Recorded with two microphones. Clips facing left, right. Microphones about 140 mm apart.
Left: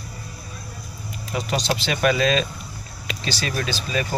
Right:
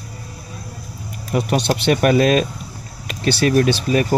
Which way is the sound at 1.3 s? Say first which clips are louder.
Right 6 dB; 55° right (ahead or behind).